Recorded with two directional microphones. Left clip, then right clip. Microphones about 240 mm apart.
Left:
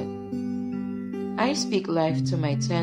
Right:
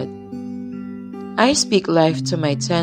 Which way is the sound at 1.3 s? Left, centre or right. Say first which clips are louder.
Right 9 dB; right.